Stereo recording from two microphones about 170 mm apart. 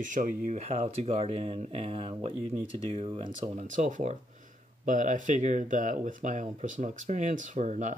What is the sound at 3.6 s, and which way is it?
Speech, 45° right (ahead or behind).